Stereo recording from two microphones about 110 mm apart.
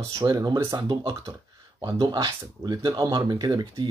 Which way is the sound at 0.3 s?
35° right (ahead or behind).